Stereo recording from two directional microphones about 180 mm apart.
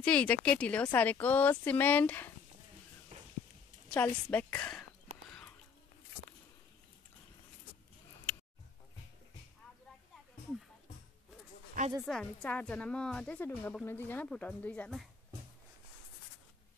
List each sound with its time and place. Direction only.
0.0 s a woman's voice: 5° left (ahead or behind)
3.1 s a sound: 35° right (ahead or behind)
3.9 s a woman's voice: 10° left (ahead or behind)
12.0 s a woman's voice: centre (ahead or behind)